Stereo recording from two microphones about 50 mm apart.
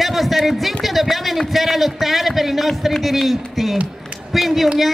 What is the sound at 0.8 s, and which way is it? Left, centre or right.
A man's voice, centre.